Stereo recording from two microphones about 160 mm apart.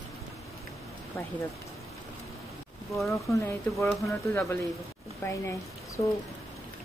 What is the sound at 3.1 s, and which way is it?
Speech, 20° left (ahead or behind).